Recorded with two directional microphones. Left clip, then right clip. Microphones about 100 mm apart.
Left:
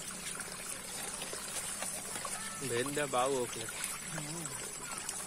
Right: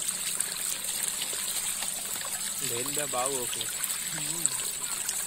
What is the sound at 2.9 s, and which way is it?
Speech, 20° left (ahead or behind).